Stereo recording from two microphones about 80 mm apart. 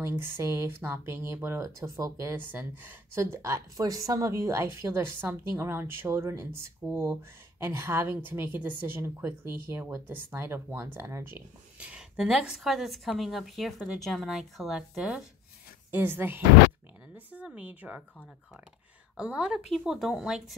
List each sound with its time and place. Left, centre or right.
0.0 s speech: right
2.3 s speech: right
3.2 s speech: right
11.8 s speech: centre
15.9 s speech: right
17.1 s a sound: centre
17.5 s speech: centre
19.1 s a woman's voice: centre